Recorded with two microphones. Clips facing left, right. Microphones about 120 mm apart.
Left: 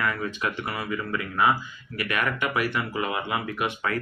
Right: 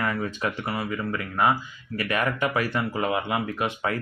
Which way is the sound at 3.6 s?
30° right (ahead or behind).